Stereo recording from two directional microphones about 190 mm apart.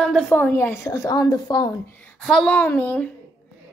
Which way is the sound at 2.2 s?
Centre (ahead or behind).